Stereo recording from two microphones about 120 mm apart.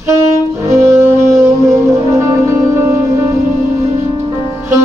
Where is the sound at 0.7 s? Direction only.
25° right (ahead or behind).